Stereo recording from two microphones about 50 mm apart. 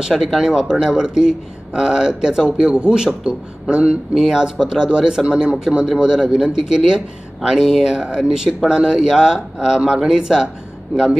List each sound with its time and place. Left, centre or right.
0.0 s a man's voice: centre
4.1 s speech: centre